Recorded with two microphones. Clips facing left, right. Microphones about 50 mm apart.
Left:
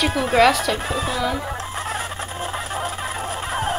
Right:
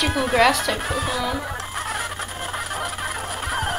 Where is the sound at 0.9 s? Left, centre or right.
Right.